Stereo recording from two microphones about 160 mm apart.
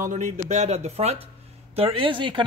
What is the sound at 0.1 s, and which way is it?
Speech, 45° right (ahead or behind).